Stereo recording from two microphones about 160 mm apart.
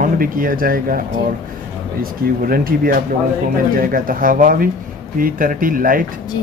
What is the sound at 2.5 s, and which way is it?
Speech, 60° right (ahead or behind).